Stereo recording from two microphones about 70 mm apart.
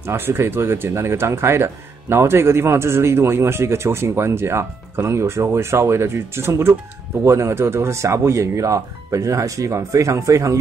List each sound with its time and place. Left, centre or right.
0.0 s speech: right